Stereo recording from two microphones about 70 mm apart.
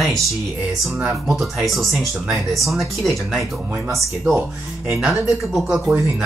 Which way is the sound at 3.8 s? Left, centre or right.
Right.